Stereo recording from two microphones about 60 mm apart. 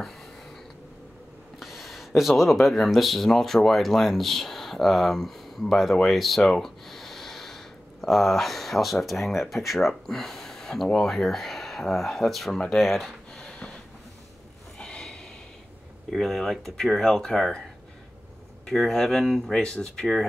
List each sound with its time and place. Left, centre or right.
1.6 s a sound: centre
2.6 s speech: centre
13.4 s a sound: centre
14.8 s snort: centre
16.1 s speech: centre
18.7 s speech: centre